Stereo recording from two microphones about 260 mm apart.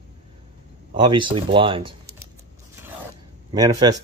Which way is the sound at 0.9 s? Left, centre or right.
Centre.